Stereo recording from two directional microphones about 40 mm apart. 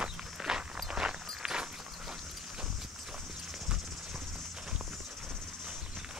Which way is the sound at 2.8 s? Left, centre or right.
Centre.